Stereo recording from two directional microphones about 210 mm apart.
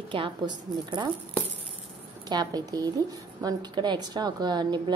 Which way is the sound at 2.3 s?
20° right (ahead or behind).